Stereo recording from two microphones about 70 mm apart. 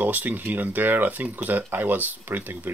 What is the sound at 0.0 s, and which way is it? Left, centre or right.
Speech, right.